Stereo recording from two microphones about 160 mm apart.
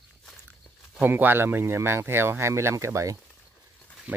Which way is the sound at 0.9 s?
10° right (ahead or behind).